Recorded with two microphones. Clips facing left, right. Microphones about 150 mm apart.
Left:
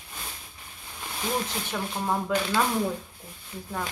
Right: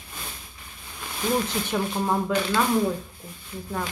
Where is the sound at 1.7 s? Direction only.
Centre (ahead or behind).